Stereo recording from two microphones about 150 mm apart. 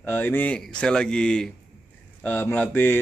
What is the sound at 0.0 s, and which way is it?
A man's voice, 15° left (ahead or behind).